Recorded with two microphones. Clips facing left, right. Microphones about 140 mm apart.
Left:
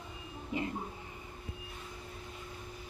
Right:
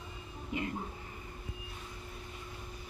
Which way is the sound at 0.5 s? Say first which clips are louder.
Left 1 dB; 30° left (ahead or behind).